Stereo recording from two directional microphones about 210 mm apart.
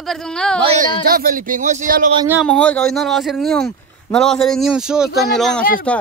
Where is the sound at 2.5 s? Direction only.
5° left (ahead or behind).